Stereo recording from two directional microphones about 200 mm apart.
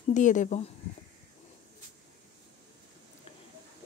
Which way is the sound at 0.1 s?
40° left (ahead or behind).